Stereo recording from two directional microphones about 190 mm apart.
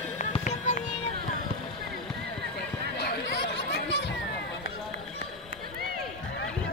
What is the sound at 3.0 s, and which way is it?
Chatter, 60° left (ahead or behind).